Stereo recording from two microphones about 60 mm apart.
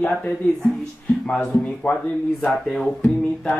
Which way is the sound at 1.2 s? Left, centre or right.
Left.